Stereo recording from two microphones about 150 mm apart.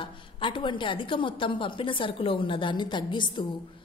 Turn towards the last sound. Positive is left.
turn(degrees=30)  # may be behind; listen again after turning